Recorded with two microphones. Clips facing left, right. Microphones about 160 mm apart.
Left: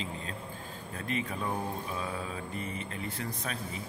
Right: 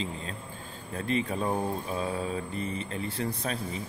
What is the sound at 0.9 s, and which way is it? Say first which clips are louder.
A man's voice: right 6 dB; 35° right (ahead or behind).